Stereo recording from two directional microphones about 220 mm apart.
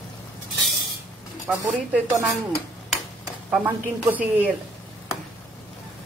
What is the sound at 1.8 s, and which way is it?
A woman's voice, 10° right (ahead or behind).